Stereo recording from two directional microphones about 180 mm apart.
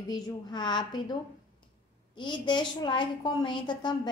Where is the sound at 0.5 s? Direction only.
25° left (ahead or behind).